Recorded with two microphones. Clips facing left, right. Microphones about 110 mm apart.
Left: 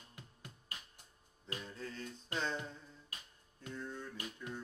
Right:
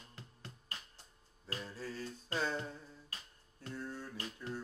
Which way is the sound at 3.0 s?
15° left (ahead or behind).